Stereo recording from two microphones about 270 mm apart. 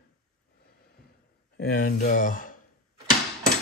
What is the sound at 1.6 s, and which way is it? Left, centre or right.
Speech, left.